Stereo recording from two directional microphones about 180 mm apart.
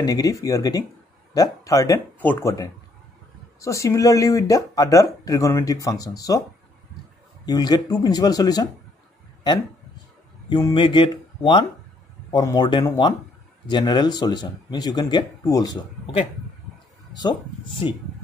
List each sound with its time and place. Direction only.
0.0 s speech: 20° left (ahead or behind)
7.4 s speech: 20° left (ahead or behind)
10.5 s speech: 25° left (ahead or behind)
17.1 s speech: 20° left (ahead or behind)